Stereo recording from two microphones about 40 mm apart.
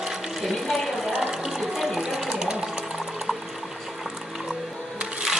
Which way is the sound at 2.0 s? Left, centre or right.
Centre.